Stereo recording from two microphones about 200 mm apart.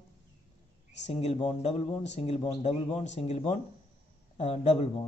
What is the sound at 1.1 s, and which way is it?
Speech, 30° left (ahead or behind).